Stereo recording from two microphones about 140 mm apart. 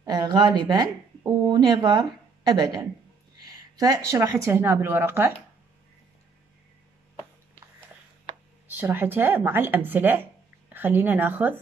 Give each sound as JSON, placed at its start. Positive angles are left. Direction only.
{"t": 0.0, "sound": "speech", "side_deg": -30}
{"t": 3.8, "sound": "speech", "side_deg": -25}
{"t": 8.6, "sound": "speech", "side_deg": -15}